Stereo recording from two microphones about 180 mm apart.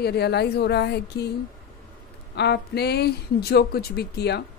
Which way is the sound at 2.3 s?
65° left (ahead or behind).